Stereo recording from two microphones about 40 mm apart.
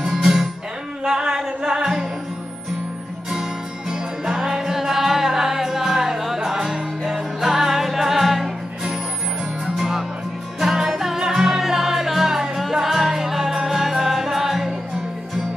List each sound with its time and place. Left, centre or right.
0.0 s music: centre
3.9 s music: centre
9.8 s music: centre